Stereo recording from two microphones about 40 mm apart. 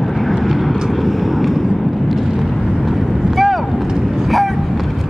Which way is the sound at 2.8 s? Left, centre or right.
Centre.